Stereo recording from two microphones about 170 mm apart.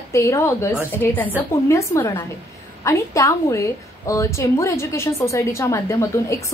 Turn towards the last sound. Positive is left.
turn(degrees=15)  # may be behind; listen again after turning